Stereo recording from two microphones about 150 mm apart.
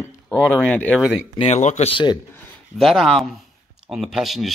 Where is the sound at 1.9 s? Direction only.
30° left (ahead or behind).